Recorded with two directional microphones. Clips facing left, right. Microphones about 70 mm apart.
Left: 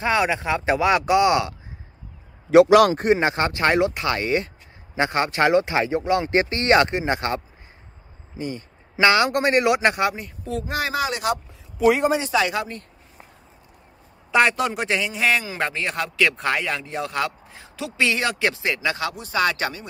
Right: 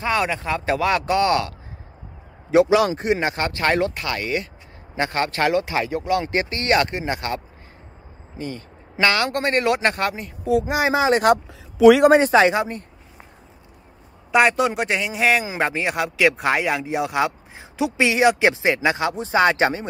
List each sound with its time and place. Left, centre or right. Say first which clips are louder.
0.0 s speech: left 1 dB; centre
2.5 s a man's voice: left 3 dB; left
2.9 s speech: left 2 dB; left
3.2 s a man's voice: left 2 dB; left
4.9 s a man's voice: left 1 dB; centre
8.4 s speech: left 1 dB; centre
10.6 s speech: right 1 dB; right
11.8 s a man's voice: right 7 dB; right
12.1 s a man's voice: right 7 dB; right
12.4 s speech: right 6 dB; right
14.3 s a man's voice: right 2 dB; centre; by 19.9 s right